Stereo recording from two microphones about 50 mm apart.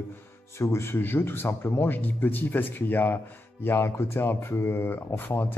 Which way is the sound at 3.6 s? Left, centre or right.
Left.